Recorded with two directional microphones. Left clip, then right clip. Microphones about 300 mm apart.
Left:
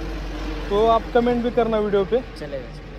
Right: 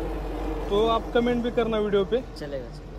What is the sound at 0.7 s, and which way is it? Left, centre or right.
Speech, centre.